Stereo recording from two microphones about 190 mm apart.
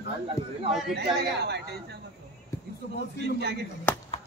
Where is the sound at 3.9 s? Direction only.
10° left (ahead or behind).